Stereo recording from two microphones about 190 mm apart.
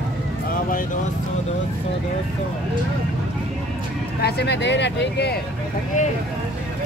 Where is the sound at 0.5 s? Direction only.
45° left (ahead or behind).